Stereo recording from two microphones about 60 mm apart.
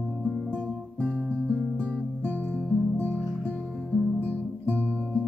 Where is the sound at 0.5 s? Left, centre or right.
Left.